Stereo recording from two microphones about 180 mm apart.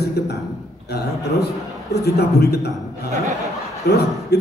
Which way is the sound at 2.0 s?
65° left (ahead or behind).